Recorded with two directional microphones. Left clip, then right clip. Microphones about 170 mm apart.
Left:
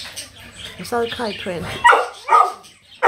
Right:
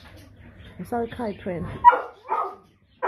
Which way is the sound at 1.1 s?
5° right (ahead or behind).